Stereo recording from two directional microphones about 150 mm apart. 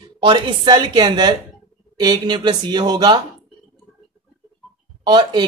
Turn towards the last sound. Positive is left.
turn(degrees=-30)  # may be behind; listen again after turning